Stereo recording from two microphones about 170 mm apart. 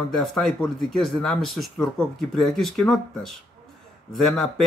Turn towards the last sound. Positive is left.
turn(degrees=0)  # may be behind; listen again after turning